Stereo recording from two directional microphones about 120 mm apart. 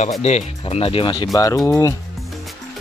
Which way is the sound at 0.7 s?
50° left (ahead or behind).